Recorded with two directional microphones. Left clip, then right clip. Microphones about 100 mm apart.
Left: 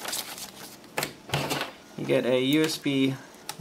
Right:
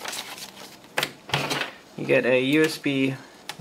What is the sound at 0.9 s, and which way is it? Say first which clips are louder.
Printer: right 4 dB; 5° right (ahead or behind).